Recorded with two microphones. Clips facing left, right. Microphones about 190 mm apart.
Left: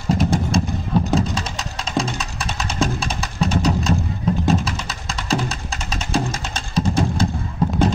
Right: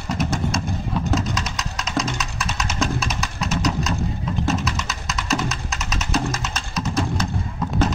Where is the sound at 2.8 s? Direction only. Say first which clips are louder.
Left 2 dB; 30° left (ahead or behind).